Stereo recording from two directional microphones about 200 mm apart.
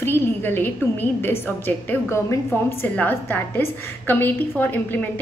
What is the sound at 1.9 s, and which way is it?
A woman's voice, 15° left (ahead or behind).